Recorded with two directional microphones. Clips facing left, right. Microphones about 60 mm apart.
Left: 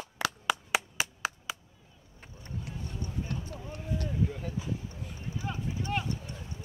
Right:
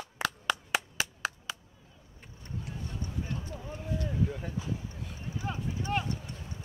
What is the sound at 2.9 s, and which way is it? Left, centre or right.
Clip-clop, centre.